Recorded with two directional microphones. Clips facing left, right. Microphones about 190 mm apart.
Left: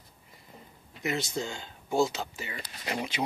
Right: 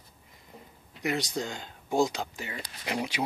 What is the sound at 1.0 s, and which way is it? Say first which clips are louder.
Speech: right 1 dB; 15° right (ahead or behind).